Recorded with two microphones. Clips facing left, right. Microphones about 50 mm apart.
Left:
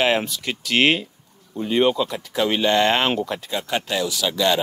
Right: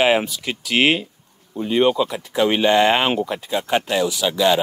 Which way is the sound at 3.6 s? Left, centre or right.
Right.